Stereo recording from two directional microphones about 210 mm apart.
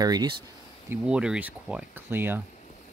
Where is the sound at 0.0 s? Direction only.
20° right (ahead or behind).